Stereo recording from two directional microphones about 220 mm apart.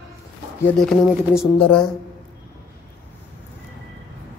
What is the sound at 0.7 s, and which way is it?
Speech, centre (ahead or behind).